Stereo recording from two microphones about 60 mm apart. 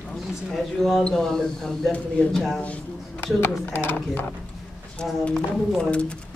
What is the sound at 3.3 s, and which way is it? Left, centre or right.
Speech, left.